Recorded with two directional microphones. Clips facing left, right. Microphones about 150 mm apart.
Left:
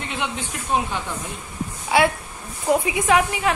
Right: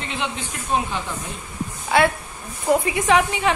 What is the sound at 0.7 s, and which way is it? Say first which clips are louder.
Speech: even; 15° left (ahead or behind).